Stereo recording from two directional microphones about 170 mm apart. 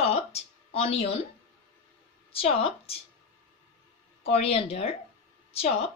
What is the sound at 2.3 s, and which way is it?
Speech, 35° left (ahead or behind).